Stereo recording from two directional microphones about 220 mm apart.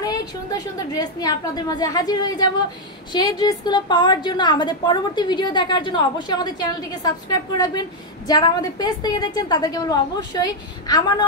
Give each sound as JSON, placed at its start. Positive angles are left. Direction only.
{"t": 0.0, "sound": "a woman's voice", "side_deg": 15}